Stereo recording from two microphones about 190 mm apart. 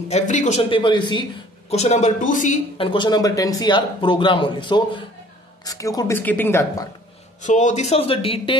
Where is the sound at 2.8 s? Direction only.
25° left (ahead or behind).